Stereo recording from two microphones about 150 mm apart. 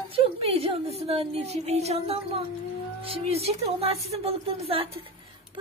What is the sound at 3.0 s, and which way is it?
Speech, 40° right (ahead or behind).